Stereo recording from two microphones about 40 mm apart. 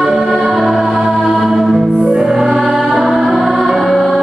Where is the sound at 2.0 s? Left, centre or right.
Right.